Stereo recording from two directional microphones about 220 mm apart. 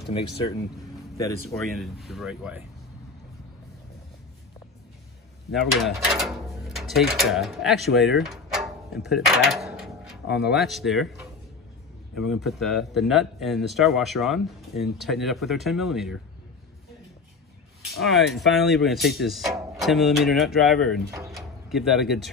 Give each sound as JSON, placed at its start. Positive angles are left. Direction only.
{"t": 1.5, "sound": "speech", "side_deg": 0}
{"t": 5.5, "sound": "speech", "side_deg": 0}
{"t": 10.2, "sound": "speech", "side_deg": 50}
{"t": 10.5, "sound": "speech", "side_deg": 0}
{"t": 12.2, "sound": "speech", "side_deg": 0}
{"t": 18.0, "sound": "speech", "side_deg": 0}
{"t": 21.3, "sound": "door", "side_deg": 0}